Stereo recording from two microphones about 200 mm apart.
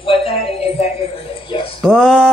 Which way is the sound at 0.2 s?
30° left (ahead or behind).